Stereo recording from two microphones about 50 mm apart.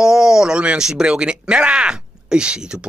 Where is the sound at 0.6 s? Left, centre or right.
Centre.